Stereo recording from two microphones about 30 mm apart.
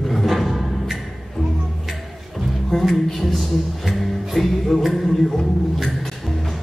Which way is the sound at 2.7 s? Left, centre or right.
Centre.